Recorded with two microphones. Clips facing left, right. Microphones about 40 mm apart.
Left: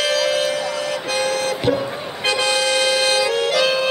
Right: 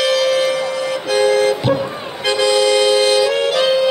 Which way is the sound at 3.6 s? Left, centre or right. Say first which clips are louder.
Right 4 dB; left.